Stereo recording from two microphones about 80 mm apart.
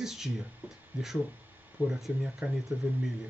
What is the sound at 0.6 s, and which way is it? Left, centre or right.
Speech, right.